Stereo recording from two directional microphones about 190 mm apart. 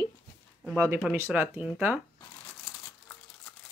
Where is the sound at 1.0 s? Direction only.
10° right (ahead or behind).